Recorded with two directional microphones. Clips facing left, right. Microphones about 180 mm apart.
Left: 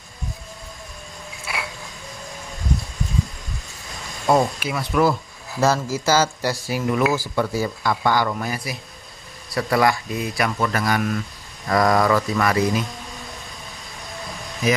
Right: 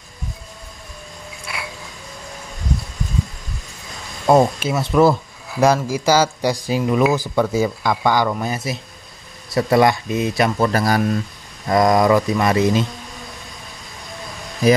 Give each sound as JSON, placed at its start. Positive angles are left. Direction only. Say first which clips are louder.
{"t": 4.6, "sound": "speech", "louder": "right 5 dB", "side_deg": -25}
{"t": 5.5, "sound": "speech", "louder": "right 4 dB", "side_deg": -15}